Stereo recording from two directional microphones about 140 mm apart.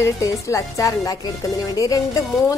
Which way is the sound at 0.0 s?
20° left (ahead or behind).